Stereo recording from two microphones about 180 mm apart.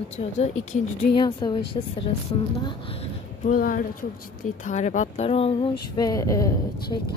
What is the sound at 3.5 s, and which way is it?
Speech, 50° left (ahead or behind).